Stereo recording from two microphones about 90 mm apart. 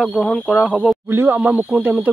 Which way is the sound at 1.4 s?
15° right (ahead or behind).